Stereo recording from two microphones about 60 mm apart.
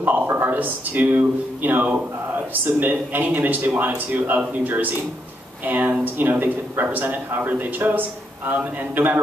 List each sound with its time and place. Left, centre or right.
0.0 s a man's voice: right
5.7 s a man's voice: right